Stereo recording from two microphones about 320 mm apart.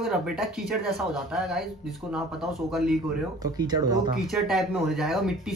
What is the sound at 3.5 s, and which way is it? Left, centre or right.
Speech, centre.